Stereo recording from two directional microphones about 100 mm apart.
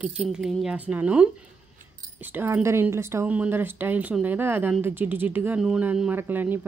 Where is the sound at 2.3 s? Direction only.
15° right (ahead or behind).